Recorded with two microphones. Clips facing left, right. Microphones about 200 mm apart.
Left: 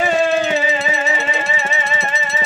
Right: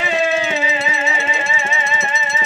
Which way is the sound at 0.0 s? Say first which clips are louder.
Left 3 dB; 45° left (ahead or behind).